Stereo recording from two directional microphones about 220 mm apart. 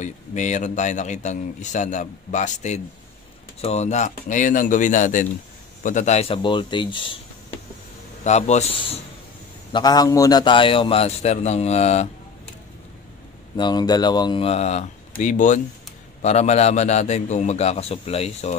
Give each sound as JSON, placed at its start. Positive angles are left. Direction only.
{"t": 0.0, "sound": "a man's voice", "side_deg": 35}
{"t": 13.6, "sound": "a man's voice", "side_deg": 20}